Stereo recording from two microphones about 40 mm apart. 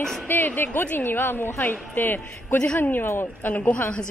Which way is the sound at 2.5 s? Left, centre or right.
Left.